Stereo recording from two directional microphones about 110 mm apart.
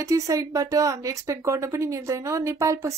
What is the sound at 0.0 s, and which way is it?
Speech, 30° right (ahead or behind).